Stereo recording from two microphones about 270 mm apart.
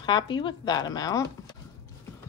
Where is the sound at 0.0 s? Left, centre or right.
Centre.